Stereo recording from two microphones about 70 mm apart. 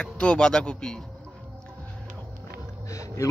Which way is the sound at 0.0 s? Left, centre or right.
Centre.